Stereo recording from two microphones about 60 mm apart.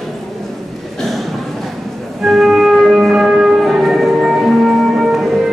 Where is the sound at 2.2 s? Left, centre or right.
Centre.